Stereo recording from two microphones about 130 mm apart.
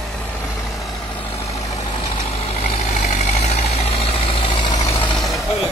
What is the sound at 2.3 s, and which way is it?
Vehicle, 55° left (ahead or behind).